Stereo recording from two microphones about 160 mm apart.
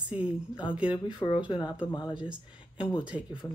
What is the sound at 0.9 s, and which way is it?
Speech, 30° left (ahead or behind).